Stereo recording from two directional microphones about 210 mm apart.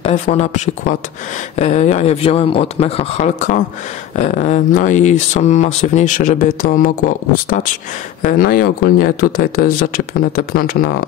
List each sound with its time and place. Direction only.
0.0 s speech: 30° left (ahead or behind)